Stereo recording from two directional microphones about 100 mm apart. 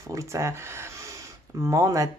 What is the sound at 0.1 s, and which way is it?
Speech, 30° right (ahead or behind).